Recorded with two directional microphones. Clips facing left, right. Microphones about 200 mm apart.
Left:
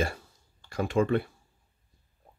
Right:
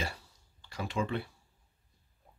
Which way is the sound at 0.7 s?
50° left (ahead or behind).